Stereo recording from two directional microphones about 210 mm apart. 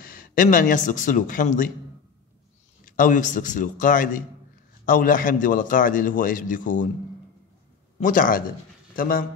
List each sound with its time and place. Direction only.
0.0 s speech: 40° left (ahead or behind)
2.8 s a man's voice: 40° left (ahead or behind)
8.0 s a man's voice: 40° left (ahead or behind)